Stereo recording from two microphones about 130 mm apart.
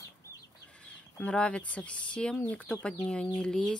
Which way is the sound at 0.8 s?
10° left (ahead or behind).